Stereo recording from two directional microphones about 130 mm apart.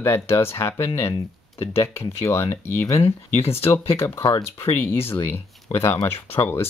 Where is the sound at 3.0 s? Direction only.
50° left (ahead or behind).